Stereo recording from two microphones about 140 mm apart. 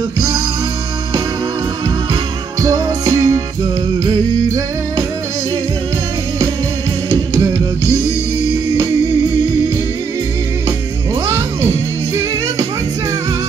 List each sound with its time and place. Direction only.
2.6 s music: 25° right (ahead or behind)